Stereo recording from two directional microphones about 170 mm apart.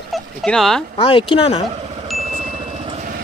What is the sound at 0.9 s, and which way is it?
Speech, 30° left (ahead or behind).